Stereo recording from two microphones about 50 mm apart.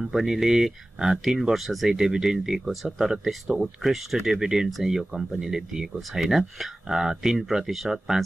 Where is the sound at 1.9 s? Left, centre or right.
Centre.